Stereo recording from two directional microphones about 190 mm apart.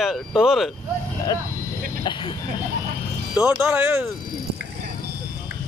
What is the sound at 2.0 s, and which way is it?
Speech, 25° left (ahead or behind).